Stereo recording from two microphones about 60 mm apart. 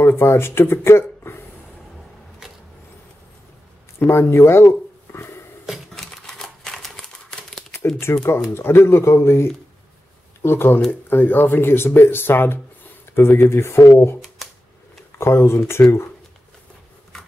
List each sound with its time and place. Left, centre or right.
0.0 s speech: left
4.1 s a sound: left
5.9 s crumpling: centre
8.1 s a man's voice: left
15.1 s a man's voice: left